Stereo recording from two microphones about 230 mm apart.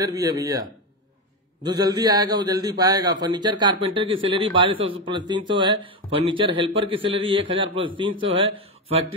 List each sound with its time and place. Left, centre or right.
0.0 s a man's voice: centre
2.0 s a man's voice: centre